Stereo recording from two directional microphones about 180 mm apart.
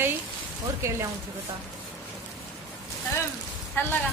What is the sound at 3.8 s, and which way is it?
Speech, 10° left (ahead or behind).